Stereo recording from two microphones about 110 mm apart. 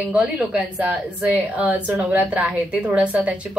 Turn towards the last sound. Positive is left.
turn(degrees=-15)  # may be behind; listen again after turning